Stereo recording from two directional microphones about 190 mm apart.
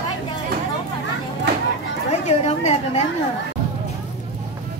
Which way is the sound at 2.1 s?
35° left (ahead or behind).